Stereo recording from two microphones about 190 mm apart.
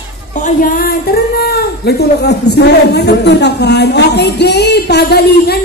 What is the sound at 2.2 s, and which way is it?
Speech, 60° left (ahead or behind).